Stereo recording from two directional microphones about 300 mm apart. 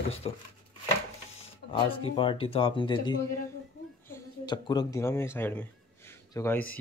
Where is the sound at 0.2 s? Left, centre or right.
Centre.